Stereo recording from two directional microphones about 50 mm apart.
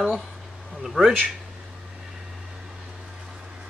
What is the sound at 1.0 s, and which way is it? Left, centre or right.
Speech, right.